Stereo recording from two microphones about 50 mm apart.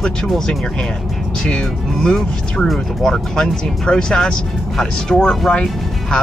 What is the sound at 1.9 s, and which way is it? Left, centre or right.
Speech, centre.